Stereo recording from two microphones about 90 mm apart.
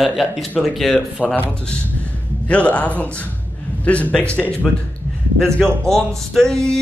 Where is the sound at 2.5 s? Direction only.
15° left (ahead or behind).